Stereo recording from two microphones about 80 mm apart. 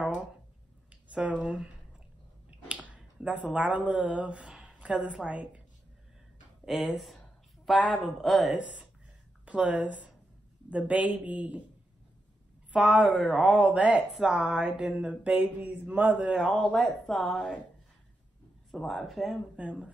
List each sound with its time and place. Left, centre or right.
1.1 s speech: centre
2.7 s speech: centre
6.6 s speech: centre
9.5 s a sound: centre
12.7 s a sound: centre
13.9 s speech: centre
14.3 s a sound: centre
16.3 s speech: centre
18.7 s speech: centre